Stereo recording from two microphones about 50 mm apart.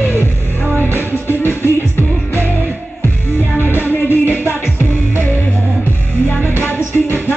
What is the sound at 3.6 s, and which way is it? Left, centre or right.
Music, left.